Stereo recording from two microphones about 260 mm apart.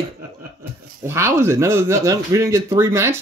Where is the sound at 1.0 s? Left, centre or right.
Centre.